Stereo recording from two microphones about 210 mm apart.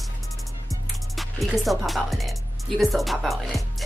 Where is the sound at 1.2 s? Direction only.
Centre (ahead or behind).